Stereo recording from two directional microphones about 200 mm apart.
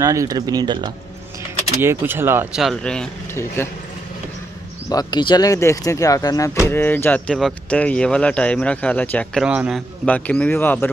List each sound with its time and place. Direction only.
0.0 s speech: 15° right (ahead or behind)
1.8 s speech: 10° right (ahead or behind)
2.6 s speech: 5° left (ahead or behind)
4.8 s speech: 20° left (ahead or behind)